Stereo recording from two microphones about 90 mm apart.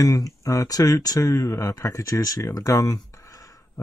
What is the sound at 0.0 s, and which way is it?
Speech, 40° left (ahead or behind).